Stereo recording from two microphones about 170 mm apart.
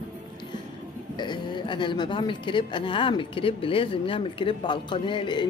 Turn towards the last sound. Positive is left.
turn(degrees=30)  # may be behind; listen again after turning